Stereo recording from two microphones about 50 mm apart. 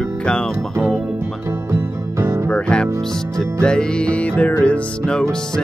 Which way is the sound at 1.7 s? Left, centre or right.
Right.